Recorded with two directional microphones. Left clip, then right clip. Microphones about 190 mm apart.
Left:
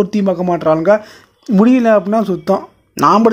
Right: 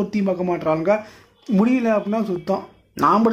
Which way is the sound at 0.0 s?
35° left (ahead or behind).